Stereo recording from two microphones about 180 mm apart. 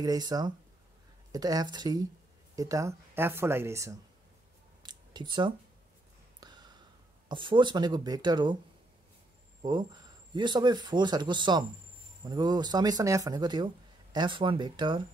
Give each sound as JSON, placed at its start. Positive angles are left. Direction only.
{"t": 0.0, "sound": "speech", "side_deg": -20}
{"t": 4.8, "sound": "a sound", "side_deg": -25}
{"t": 7.2, "sound": "speech", "side_deg": -25}
{"t": 9.6, "sound": "speech", "side_deg": -25}